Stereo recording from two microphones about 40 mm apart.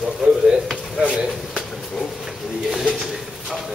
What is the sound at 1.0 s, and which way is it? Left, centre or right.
Speech, right.